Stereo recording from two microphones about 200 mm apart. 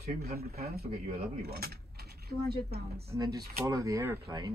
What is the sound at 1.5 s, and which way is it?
Mechanisms, 50° right (ahead or behind).